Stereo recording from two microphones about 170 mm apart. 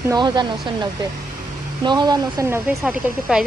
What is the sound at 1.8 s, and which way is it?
Speech, 25° right (ahead or behind).